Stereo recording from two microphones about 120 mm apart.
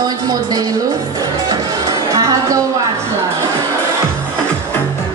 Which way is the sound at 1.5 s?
30° right (ahead or behind).